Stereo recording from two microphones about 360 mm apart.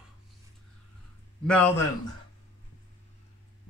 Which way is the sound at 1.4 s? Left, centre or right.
Centre.